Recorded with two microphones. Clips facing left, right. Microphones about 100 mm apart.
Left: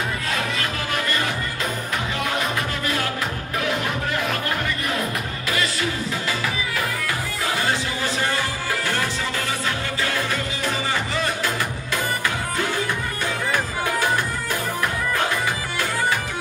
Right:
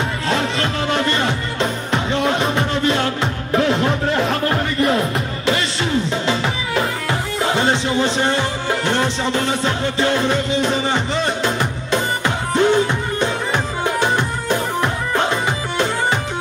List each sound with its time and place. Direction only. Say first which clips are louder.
0.3 s music: right 6 dB; 30° right (ahead or behind)